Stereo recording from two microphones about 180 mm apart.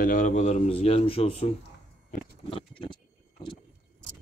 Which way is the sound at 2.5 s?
30° left (ahead or behind).